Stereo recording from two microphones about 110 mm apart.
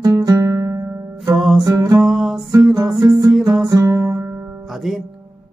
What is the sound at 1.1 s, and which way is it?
Music, centre (ahead or behind).